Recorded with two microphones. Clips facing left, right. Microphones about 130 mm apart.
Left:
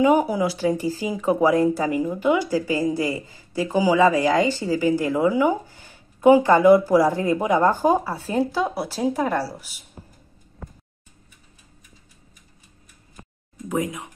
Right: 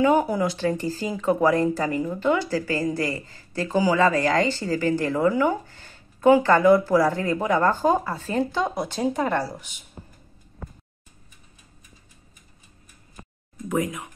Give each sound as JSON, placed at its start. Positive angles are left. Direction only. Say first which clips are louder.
{"t": 0.0, "sound": "speech", "louder": "left 2 dB", "side_deg": 10}
{"t": 13.7, "sound": "speech", "louder": "even", "side_deg": 15}